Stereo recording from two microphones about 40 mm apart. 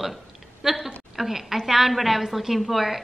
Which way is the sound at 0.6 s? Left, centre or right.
Centre.